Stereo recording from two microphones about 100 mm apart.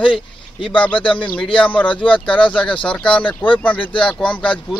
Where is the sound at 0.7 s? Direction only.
15° left (ahead or behind).